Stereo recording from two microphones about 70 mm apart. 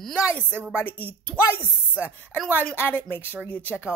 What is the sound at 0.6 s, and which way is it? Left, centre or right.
Speech, right.